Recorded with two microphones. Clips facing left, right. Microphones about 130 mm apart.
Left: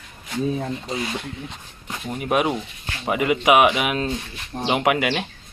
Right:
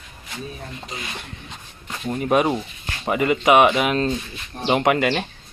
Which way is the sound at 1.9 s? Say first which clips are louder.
Right 3 dB; 5° left (ahead or behind).